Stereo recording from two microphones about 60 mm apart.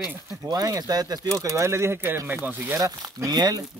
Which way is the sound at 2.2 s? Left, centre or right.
Right.